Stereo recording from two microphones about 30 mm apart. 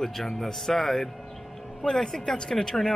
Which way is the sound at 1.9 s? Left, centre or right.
Centre.